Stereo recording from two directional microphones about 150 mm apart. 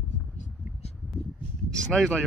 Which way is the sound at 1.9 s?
5° left (ahead or behind).